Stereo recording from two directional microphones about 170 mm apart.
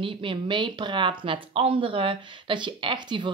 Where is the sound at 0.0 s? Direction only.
30° right (ahead or behind).